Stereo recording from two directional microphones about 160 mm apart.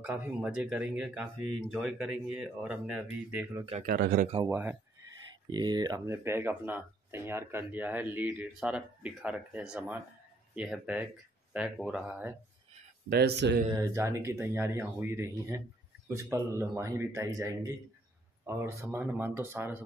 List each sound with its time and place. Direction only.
0.0 s speech: 5° right (ahead or behind)
3.8 s speech: 75° right (ahead or behind)
4.5 s speech: 10° right (ahead or behind)
5.5 s speech: 25° right (ahead or behind); by 12.4 s 10° right (ahead or behind)
13.1 s speech: 85° right
13.7 s speech: 20° right (ahead or behind)